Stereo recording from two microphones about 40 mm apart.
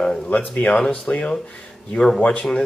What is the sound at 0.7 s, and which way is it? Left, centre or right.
Speech, left.